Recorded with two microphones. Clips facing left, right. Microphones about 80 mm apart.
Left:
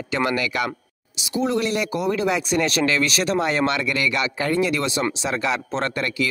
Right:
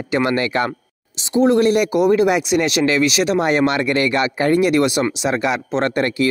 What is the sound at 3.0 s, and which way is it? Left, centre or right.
Speech, centre.